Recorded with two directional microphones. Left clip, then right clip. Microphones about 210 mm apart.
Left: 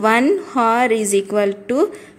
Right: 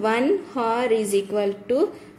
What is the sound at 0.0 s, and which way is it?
A woman's voice, 30° left (ahead or behind).